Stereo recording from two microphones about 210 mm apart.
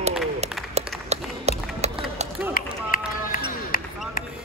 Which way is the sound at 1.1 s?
30° right (ahead or behind).